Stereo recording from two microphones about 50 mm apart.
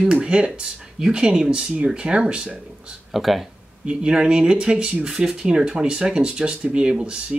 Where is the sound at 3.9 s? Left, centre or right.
Right.